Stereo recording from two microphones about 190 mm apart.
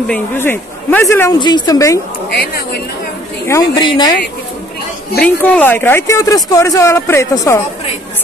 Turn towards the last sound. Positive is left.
turn(degrees=15)  # may be behind; listen again after turning